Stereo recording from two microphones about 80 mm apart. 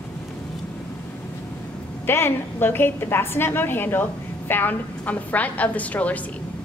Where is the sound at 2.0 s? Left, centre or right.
Left.